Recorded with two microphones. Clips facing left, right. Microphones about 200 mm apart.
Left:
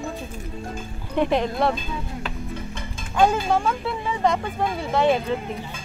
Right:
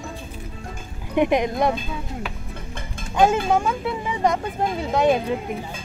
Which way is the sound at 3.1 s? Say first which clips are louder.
Right 1 dB; 15° right (ahead or behind).